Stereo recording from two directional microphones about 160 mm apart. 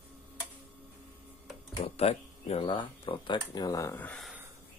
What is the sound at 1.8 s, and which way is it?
Speech, 40° left (ahead or behind).